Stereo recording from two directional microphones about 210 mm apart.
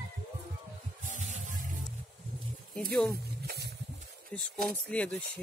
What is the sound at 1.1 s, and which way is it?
Music, 35° right (ahead or behind).